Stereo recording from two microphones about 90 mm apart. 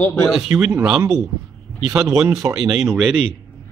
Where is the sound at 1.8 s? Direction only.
10° right (ahead or behind).